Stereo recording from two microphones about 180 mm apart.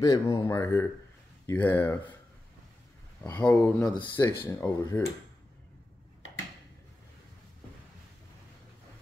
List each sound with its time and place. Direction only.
0.0 s speech: 20° left (ahead or behind)
3.2 s speech: 10° left (ahead or behind)
3.9 s speech: 25° left (ahead or behind)
4.5 s speech: 10° left (ahead or behind)